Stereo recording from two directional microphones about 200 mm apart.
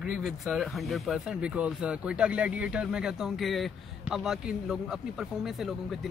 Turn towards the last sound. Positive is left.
turn(degrees=0)  # may be behind; listen again after turning